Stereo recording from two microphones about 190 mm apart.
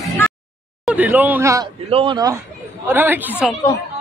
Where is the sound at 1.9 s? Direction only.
30° right (ahead or behind).